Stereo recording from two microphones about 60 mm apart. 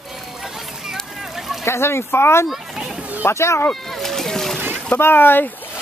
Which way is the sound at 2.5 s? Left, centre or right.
Centre.